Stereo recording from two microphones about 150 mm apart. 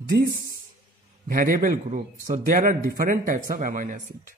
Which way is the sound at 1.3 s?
65° right (ahead or behind).